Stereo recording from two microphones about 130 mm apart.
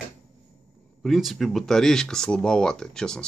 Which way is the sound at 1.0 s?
Centre (ahead or behind).